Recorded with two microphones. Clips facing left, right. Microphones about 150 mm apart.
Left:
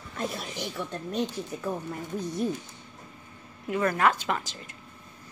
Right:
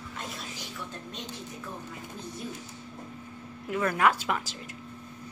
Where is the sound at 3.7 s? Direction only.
5° right (ahead or behind).